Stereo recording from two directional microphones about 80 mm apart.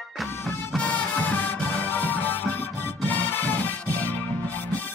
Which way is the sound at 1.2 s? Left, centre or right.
Left.